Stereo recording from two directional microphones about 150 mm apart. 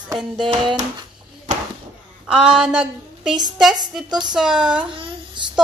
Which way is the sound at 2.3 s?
5° right (ahead or behind).